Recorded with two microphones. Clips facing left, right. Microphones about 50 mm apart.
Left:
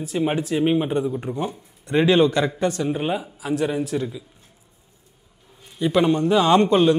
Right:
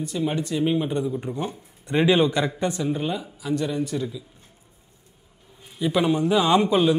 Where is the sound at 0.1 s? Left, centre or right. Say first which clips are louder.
Left 5 dB; left.